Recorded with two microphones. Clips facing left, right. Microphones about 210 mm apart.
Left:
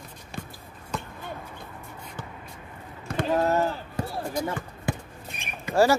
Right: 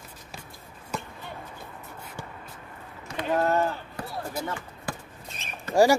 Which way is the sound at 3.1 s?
55° left (ahead or behind).